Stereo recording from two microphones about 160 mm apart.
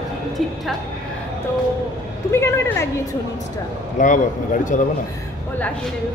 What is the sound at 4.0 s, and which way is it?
Speech, 55° left (ahead or behind).